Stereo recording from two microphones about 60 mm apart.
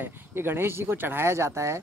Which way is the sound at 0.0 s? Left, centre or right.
Right.